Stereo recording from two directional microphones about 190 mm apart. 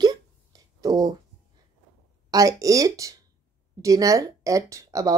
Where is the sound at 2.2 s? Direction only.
20° right (ahead or behind).